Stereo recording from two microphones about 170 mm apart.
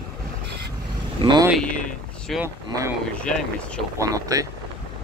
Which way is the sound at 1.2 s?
25° right (ahead or behind).